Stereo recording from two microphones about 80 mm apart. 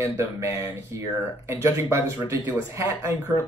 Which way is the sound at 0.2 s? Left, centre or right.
Right.